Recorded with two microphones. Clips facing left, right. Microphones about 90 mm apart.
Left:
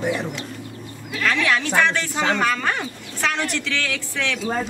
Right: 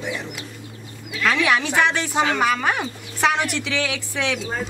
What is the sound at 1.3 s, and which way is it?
A woman's voice, 15° right (ahead or behind).